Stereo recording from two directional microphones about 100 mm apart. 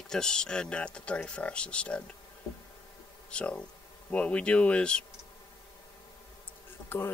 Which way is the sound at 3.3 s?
10° left (ahead or behind).